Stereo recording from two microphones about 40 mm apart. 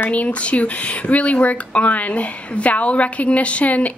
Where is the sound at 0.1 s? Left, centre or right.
Left.